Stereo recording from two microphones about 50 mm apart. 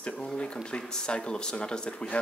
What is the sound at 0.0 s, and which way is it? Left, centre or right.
Speech, centre.